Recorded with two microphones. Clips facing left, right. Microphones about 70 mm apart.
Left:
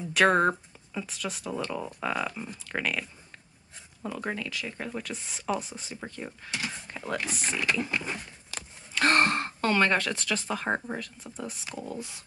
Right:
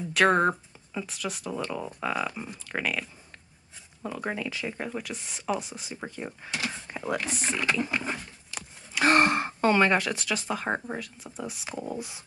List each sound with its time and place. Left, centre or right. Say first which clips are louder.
0.1 s speech: even; centre
4.5 s speech: right 3 dB; right
4.7 s speech: right 1 dB; centre